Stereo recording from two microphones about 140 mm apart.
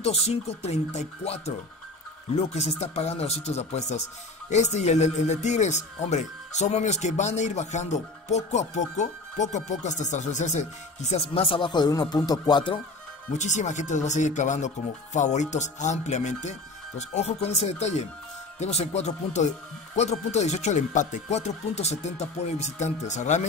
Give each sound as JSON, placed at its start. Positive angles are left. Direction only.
{"t": 0.0, "sound": "speech", "side_deg": 50}
{"t": 13.3, "sound": "speech", "side_deg": 60}